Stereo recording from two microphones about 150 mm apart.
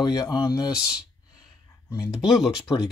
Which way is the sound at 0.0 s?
25° left (ahead or behind).